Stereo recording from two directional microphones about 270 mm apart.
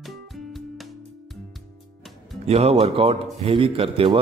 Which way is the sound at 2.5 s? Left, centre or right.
Right.